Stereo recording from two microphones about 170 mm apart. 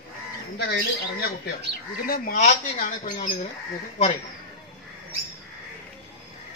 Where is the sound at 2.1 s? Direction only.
60° left (ahead or behind).